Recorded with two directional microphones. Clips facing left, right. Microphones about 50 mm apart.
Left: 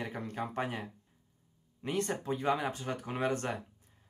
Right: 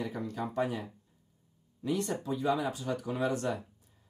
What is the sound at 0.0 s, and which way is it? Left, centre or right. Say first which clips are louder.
Speech: right 2 dB; left.